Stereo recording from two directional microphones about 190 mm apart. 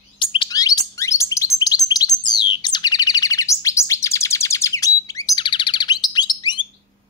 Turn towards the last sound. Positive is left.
turn(degrees=20)  # may be behind; listen again after turning